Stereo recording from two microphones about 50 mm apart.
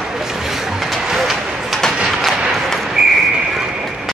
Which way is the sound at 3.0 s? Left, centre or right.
Centre.